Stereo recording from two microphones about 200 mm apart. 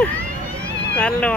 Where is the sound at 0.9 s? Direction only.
5° left (ahead or behind).